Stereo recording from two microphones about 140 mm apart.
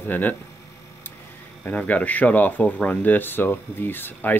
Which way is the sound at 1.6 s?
10° left (ahead or behind).